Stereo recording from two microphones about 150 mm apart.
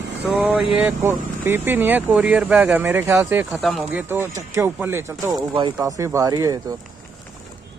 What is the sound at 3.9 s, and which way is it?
Speech, 15° right (ahead or behind).